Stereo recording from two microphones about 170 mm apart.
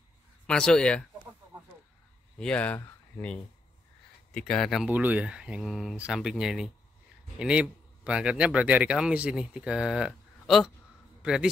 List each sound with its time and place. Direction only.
0.5 s speech: 5° left (ahead or behind)
2.3 s speech: 5° left (ahead or behind)